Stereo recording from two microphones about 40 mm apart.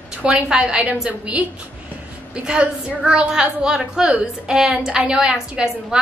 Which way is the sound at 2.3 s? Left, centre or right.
Right.